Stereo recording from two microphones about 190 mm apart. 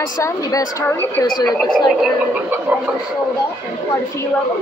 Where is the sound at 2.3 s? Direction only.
5° right (ahead or behind).